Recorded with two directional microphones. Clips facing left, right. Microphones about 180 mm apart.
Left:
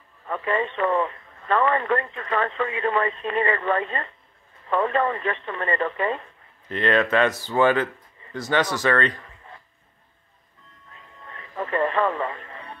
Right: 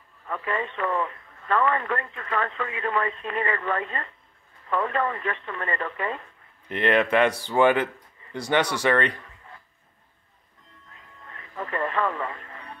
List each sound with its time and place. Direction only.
0.3 s speech: 25° left (ahead or behind)
6.7 s speech: 15° right (ahead or behind)
11.2 s radio: 25° left (ahead or behind)